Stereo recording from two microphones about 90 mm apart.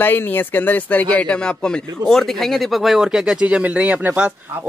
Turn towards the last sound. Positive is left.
turn(degrees=-15)  # may be behind; listen again after turning